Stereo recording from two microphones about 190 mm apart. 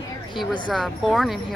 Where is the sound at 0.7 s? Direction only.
Centre (ahead or behind).